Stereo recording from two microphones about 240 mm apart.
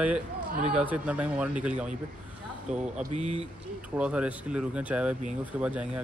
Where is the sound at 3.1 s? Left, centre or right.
Right.